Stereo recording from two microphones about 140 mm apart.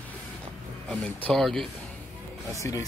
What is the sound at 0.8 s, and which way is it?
Speech, 5° left (ahead or behind).